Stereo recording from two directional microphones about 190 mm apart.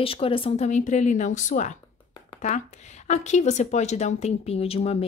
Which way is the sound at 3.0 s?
35° left (ahead or behind).